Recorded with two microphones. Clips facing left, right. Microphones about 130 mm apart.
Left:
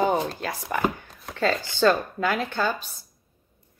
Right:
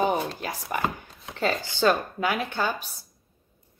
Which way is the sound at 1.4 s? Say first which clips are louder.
Left 2 dB; 15° right (ahead or behind).